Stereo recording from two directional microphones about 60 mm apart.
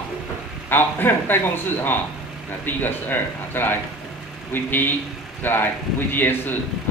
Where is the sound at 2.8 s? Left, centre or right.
Left.